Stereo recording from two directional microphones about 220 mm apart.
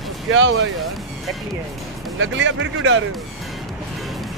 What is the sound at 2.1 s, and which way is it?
Speech, 60° right (ahead or behind).